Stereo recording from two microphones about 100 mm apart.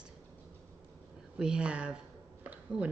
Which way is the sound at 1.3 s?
10° right (ahead or behind).